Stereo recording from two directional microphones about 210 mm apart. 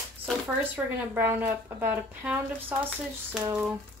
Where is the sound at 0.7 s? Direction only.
10° right (ahead or behind).